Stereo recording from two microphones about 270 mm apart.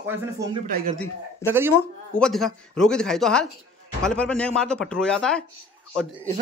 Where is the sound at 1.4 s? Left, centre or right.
Centre.